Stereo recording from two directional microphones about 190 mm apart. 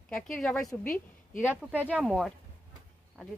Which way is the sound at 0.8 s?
45° left (ahead or behind).